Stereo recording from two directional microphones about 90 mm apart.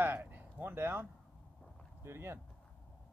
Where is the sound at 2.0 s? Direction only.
30° right (ahead or behind).